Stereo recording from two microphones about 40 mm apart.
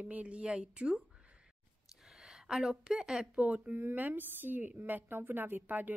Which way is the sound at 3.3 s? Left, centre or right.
Right.